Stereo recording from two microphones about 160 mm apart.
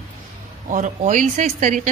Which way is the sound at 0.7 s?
50° right (ahead or behind).